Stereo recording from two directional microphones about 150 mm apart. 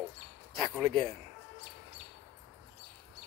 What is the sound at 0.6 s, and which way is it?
Speech, centre (ahead or behind).